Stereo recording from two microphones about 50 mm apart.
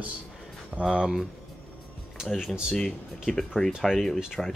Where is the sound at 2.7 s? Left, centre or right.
Centre.